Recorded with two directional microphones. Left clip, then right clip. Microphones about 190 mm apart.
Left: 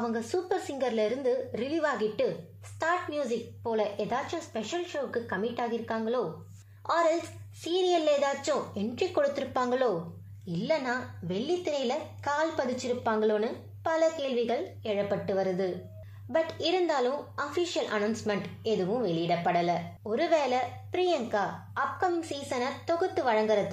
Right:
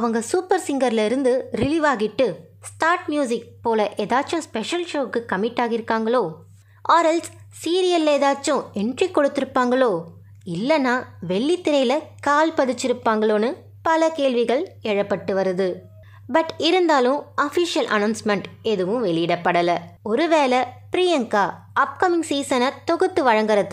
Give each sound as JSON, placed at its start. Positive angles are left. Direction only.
{"t": 0.0, "sound": "a woman's voice", "side_deg": -45}